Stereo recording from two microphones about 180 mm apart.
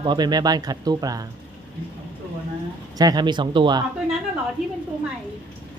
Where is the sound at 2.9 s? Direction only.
20° right (ahead or behind).